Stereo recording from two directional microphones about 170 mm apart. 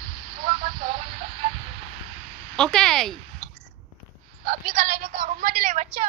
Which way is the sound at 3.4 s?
40° right (ahead or behind).